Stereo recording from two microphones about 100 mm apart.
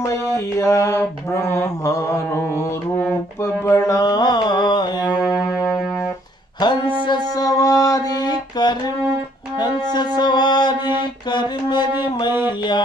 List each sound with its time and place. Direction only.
0.0 s mantra: 30° left (ahead or behind)
3.6 s music: 30° left (ahead or behind)
5.3 s music: 35° left (ahead or behind)
6.6 s a sound: 50° left (ahead or behind)
7.4 s a sound: 35° left (ahead or behind)
9.6 s music: 45° left (ahead or behind)